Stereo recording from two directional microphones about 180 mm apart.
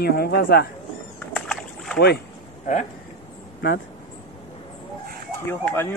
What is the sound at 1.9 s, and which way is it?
Speech, 65° left (ahead or behind).